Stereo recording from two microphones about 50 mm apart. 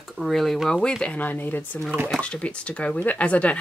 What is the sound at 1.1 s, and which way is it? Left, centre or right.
Speech, left.